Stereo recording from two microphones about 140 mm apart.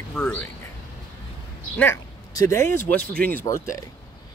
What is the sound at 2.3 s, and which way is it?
Speech, 30° left (ahead or behind).